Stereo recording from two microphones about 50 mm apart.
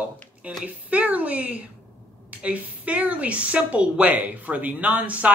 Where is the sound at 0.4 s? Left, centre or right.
Right.